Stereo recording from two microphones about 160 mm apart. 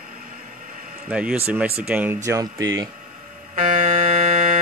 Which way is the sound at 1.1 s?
10° right (ahead or behind).